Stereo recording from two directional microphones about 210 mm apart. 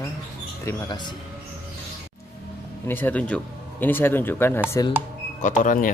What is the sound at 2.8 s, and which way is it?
Speech, 10° left (ahead or behind).